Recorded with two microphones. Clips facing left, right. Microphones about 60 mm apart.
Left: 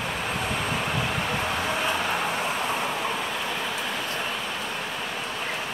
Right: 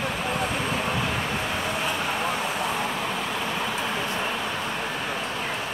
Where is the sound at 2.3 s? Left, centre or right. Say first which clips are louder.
Even; left.